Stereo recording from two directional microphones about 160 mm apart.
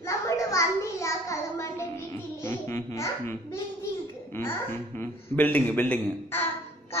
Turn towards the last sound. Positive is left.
turn(degrees=10)  # may be behind; listen again after turning